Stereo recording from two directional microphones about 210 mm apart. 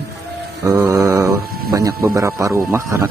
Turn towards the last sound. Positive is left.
turn(degrees=-10)  # may be behind; listen again after turning